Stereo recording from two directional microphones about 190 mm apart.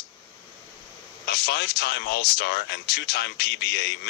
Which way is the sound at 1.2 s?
60° left (ahead or behind).